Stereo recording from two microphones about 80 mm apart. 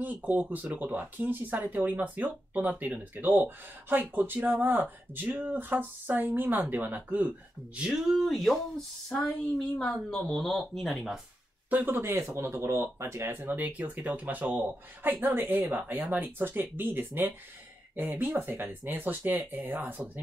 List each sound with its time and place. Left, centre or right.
0.0 s speech: right
8.3 s speech: centre
9.6 s a woman's voice: centre
10.2 s speech: centre
11.7 s speech: right
13.5 s speech: centre